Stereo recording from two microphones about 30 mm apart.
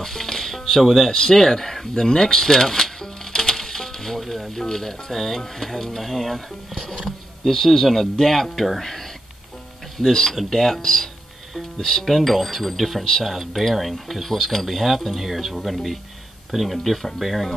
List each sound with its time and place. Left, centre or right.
0.0 s music: centre
0.7 s speech: centre
1.1 s a sound: centre
4.2 s music: centre
4.5 s speech: centre
6.7 s speech: centre
9.9 s speech: centre